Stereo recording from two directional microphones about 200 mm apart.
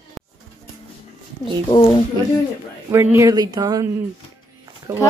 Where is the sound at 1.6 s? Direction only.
20° left (ahead or behind).